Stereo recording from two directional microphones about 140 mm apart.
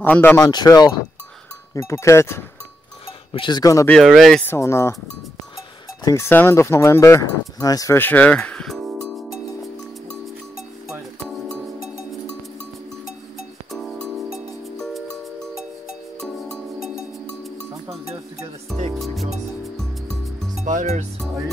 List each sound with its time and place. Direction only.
0.0 s speech: 15° left (ahead or behind)
0.4 s speech: 30° left (ahead or behind)
1.7 s speech: 20° left (ahead or behind)
3.3 s speech: 30° left (ahead or behind)
3.8 s speech: 5° left (ahead or behind)
4.5 s speech: 20° left (ahead or behind)
6.0 s speech: 20° left (ahead or behind); by 8.9 s centre (ahead or behind)
9.0 s music: centre (ahead or behind)
10.9 s music: 5° left (ahead or behind)
13.7 s music: centre (ahead or behind)
18.9 s music: centre (ahead or behind)
19.8 s rub: centre (ahead or behind)
20.6 s music: 60° right (ahead or behind)